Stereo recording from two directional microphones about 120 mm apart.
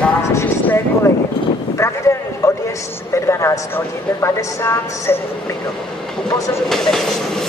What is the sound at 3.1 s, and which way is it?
A woman's voice, 25° left (ahead or behind).